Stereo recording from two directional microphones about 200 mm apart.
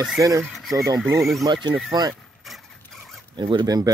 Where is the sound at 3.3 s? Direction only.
25° right (ahead or behind).